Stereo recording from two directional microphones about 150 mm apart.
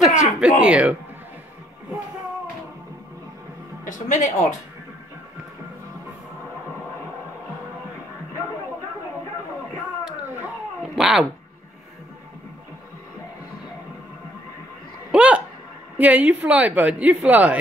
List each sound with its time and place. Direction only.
0.0 s a woman's voice: 5° right (ahead or behind)
3.8 s speech: 55° left (ahead or behind)
10.0 s a sound: 15° right (ahead or behind)
11.0 s speech: centre (ahead or behind)
15.0 s a woman's voice: 10° right (ahead or behind)